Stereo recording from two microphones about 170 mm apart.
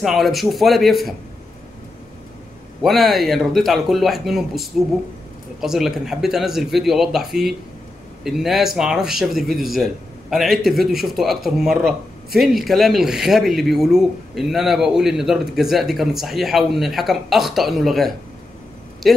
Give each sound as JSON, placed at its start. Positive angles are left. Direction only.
{"t": 0.0, "sound": "speech", "side_deg": 0}
{"t": 2.8, "sound": "speech", "side_deg": 0}